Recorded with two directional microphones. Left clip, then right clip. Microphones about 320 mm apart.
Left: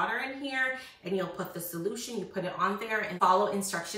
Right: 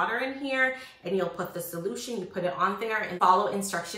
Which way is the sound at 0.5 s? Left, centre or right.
Centre.